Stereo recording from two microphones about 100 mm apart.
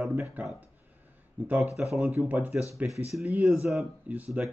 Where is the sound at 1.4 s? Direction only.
15° right (ahead or behind).